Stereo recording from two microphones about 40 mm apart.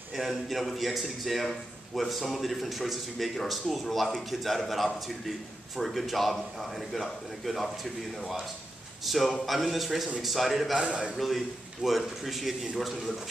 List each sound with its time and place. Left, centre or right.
0.1 s speech: centre
10.8 s a man's voice: right
11.1 s speech: centre